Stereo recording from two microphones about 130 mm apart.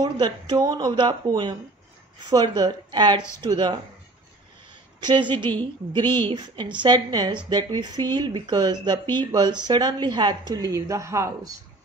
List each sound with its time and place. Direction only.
0.0 s speech: 30° right (ahead or behind)
5.0 s speech: 35° right (ahead or behind)
6.0 s speech: 15° left (ahead or behind)
6.3 s speech: 35° right (ahead or behind)
9.0 s speech: 15° left (ahead or behind)
9.3 s a woman's voice: 35° right (ahead or behind)